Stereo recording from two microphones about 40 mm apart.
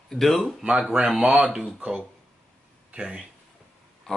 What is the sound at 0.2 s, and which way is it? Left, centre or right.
Speech, centre.